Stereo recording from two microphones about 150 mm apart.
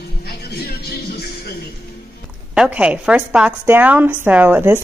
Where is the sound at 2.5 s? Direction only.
5° right (ahead or behind).